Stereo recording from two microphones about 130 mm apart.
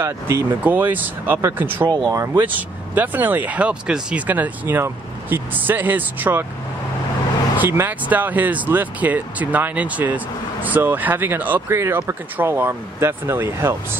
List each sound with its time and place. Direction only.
0.0 s speech: 20° right (ahead or behind)
2.4 s speech: 15° right (ahead or behind)
7.5 s speech: 15° right (ahead or behind)